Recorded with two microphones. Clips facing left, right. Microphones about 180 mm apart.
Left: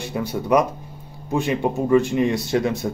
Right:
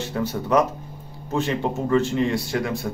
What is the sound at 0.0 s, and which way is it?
A man's voice, 15° left (ahead or behind).